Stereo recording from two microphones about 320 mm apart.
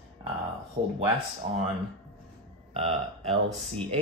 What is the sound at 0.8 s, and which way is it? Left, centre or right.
Speech, right.